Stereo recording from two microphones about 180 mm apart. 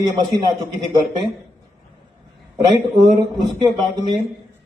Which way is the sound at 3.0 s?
25° right (ahead or behind).